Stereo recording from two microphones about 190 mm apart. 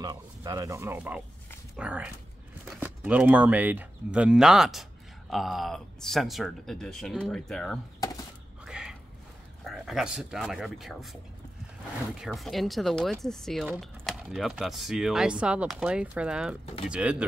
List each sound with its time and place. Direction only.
0.0 s speech: 20° right (ahead or behind); by 7.8 s 5° left (ahead or behind)
8.6 s a sound: 5° right (ahead or behind)
9.7 s speech: centre (ahead or behind)
12.2 s speech: centre (ahead or behind)